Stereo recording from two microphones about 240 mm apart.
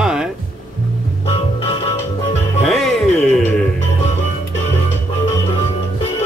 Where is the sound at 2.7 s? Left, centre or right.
Centre.